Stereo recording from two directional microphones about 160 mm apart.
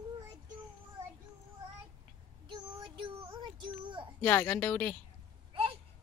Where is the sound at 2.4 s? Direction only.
30° right (ahead or behind).